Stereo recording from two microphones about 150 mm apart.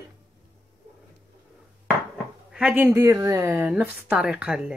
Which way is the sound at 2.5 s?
5° right (ahead or behind).